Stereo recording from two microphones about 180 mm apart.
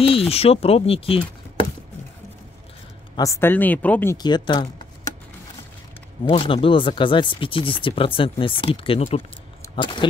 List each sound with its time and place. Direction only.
0.0 s speech: 30° left (ahead or behind)
3.2 s speech: 15° left (ahead or behind)
4.2 s speech: 25° left (ahead or behind)
6.2 s speech: 30° left (ahead or behind)
9.6 s a sound: 25° left (ahead or behind)